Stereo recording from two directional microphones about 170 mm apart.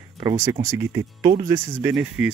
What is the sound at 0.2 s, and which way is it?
Speech, 25° right (ahead or behind).